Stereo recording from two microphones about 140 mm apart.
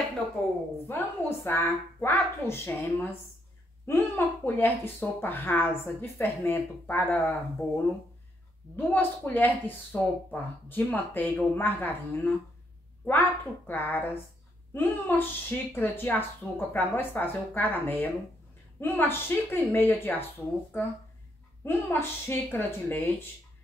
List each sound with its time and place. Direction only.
0.4 s a woman's voice: 5° left (ahead or behind)
10.8 s a woman's voice: 10° left (ahead or behind)